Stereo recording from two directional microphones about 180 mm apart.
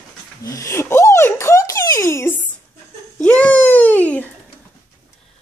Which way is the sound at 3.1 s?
10° left (ahead or behind).